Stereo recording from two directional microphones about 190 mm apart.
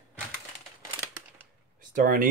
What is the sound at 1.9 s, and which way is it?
Speech, 45° right (ahead or behind).